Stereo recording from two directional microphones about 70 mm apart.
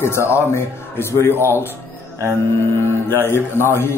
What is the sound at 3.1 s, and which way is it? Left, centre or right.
Speech, left.